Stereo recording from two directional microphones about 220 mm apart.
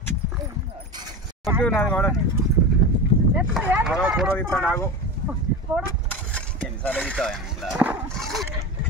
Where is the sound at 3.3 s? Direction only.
10° right (ahead or behind).